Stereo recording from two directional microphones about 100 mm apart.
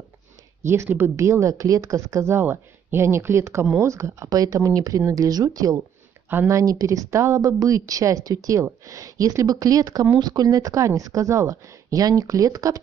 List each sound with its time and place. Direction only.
0.7 s speech: 25° right (ahead or behind)